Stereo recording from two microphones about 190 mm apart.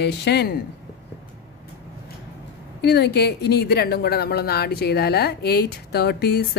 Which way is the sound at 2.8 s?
60° left (ahead or behind).